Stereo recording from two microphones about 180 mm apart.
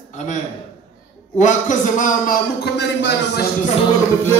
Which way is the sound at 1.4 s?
40° left (ahead or behind).